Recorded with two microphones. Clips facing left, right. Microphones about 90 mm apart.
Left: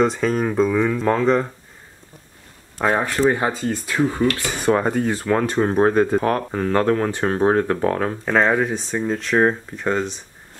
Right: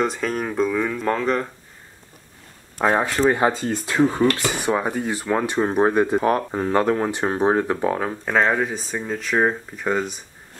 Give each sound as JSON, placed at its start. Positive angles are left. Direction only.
{"t": 0.0, "sound": "speech", "side_deg": 0}
{"t": 2.8, "sound": "speech", "side_deg": -5}
{"t": 4.1, "sound": "speech", "side_deg": -25}
{"t": 4.6, "sound": "speech", "side_deg": -5}